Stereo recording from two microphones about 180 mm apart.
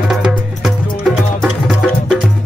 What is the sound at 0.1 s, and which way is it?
Music, centre (ahead or behind).